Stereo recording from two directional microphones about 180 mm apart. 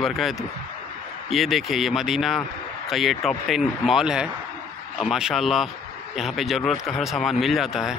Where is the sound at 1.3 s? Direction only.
Centre (ahead or behind).